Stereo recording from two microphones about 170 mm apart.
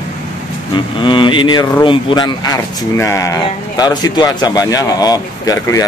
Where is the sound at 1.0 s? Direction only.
30° left (ahead or behind).